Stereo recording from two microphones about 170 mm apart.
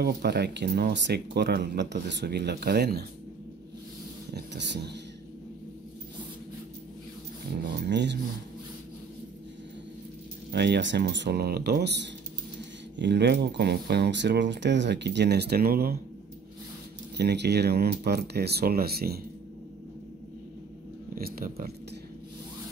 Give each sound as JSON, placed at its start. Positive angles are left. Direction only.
{"t": 0.0, "sound": "speech", "side_deg": -75}
{"t": 4.3, "sound": "speech", "side_deg": -85}
{"t": 7.6, "sound": "speech", "side_deg": -90}
{"t": 10.5, "sound": "speech", "side_deg": -80}
{"t": 17.2, "sound": "speech", "side_deg": -80}
{"t": 21.1, "sound": "speech", "side_deg": -60}